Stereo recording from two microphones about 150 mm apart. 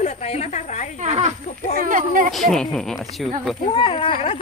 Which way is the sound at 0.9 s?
50° right (ahead or behind).